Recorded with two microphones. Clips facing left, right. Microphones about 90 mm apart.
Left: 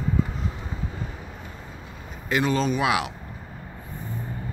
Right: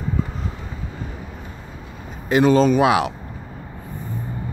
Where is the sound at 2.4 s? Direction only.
40° right (ahead or behind).